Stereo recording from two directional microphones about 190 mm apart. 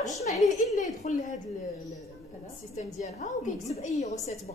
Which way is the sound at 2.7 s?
40° left (ahead or behind).